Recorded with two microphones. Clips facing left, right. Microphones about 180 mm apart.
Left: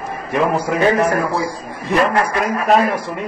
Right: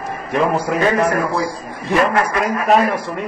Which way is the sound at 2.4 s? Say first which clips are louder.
Even; centre (ahead or behind).